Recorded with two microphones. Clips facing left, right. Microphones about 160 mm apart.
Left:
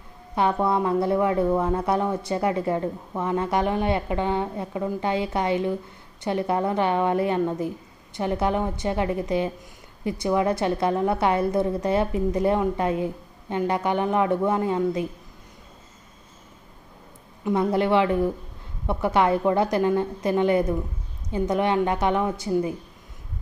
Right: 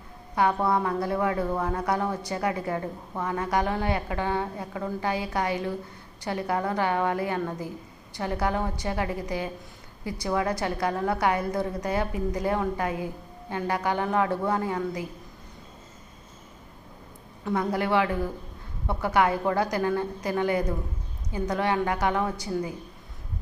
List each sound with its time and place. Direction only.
0.4 s a woman's voice: 20° left (ahead or behind)
17.5 s a woman's voice: 25° left (ahead or behind)